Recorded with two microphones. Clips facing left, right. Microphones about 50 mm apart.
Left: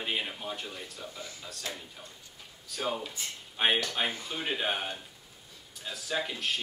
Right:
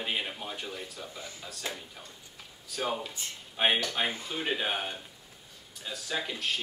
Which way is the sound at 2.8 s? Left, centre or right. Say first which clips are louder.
Right 1 dB; centre.